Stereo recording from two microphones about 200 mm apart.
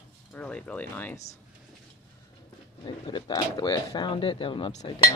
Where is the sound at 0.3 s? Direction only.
5° left (ahead or behind).